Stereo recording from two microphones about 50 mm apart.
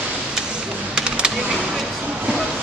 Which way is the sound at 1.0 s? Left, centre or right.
Centre.